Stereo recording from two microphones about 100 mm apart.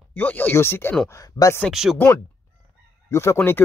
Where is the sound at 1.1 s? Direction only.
35° left (ahead or behind).